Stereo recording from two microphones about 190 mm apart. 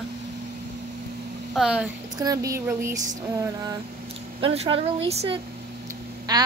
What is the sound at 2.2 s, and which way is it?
Speech, 20° right (ahead or behind).